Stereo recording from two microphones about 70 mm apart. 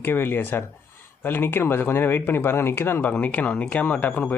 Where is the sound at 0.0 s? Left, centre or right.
Left.